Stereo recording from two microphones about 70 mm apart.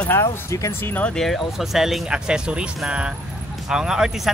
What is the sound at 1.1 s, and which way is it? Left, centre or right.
Speech, centre.